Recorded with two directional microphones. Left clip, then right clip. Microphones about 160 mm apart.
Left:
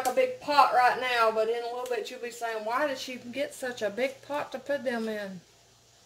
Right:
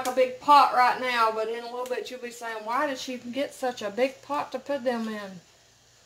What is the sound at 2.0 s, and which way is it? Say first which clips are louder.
A woman's voice: left 1 dB; 25° right (ahead or behind).